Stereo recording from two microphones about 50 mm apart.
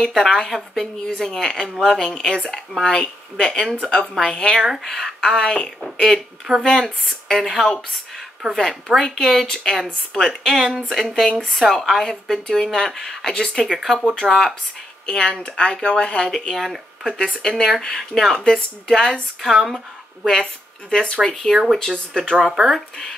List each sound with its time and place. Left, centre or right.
0.0 s a woman's voice: centre
2.0 s speech: left
4.6 s a woman's voice: centre
4.8 s a woman's voice: centre
13.8 s a woman's voice: centre
15.0 s speech: centre
16.3 s a woman's voice: centre
17.0 s speech: centre
19.4 s a woman's voice: centre
20.9 s speech: centre
22.4 s a woman's voice: centre